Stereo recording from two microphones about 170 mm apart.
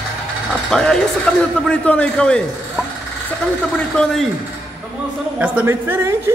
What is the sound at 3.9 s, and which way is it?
Speech, centre (ahead or behind).